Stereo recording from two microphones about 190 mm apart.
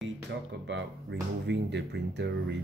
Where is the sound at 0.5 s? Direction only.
70° right (ahead or behind).